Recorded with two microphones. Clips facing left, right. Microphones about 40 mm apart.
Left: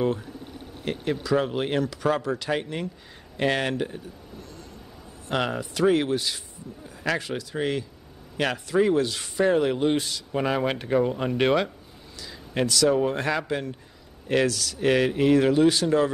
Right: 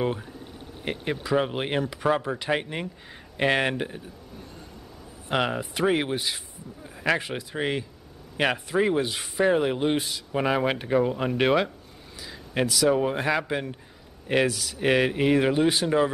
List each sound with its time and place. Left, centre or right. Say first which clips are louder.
0.9 s speech: left 2 dB; centre